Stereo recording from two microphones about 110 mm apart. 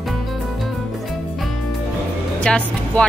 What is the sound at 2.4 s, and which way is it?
Speech, 10° left (ahead or behind).